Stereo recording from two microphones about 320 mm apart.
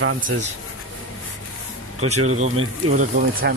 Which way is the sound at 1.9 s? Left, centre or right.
Right.